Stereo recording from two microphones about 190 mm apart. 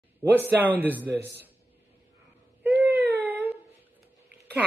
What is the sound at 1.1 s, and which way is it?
Speech, 60° right (ahead or behind).